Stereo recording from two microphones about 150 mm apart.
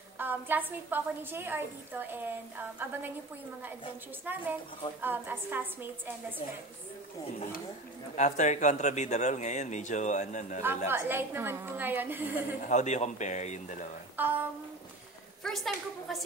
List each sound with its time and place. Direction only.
0.2 s a woman's voice: 10° right (ahead or behind)
4.3 s a woman's voice: 10° right (ahead or behind)
8.2 s speech: 55° left (ahead or behind)
10.9 s a woman's voice: 15° right (ahead or behind)
12.6 s speech: 50° left (ahead or behind)
14.1 s music: 10° right (ahead or behind)
15.4 s a woman's voice: centre (ahead or behind)